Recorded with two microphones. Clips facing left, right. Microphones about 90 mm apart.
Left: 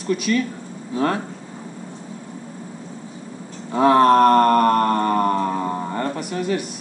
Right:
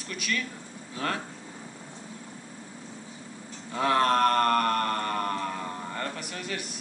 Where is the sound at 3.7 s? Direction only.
30° left (ahead or behind).